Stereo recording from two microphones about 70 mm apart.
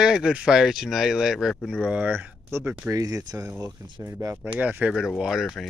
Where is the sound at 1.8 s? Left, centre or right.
Centre.